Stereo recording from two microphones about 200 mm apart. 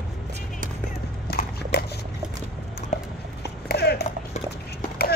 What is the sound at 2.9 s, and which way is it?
Clip-clop, 40° left (ahead or behind).